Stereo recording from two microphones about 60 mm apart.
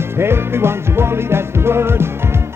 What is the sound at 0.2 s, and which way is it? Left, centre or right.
Music, right.